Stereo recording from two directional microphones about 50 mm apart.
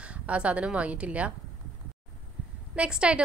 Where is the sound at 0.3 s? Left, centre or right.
Right.